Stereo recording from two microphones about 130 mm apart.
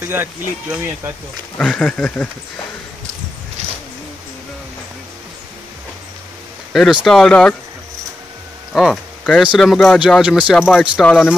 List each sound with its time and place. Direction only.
0.0 s speech: 15° right (ahead or behind)
1.6 s speech: 5° left (ahead or behind)
6.7 s speech: 5° right (ahead or behind)
8.7 s speech: centre (ahead or behind)